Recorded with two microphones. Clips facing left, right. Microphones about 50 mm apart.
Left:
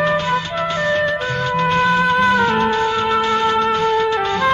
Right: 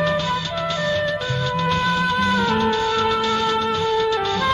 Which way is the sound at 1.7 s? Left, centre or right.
Left.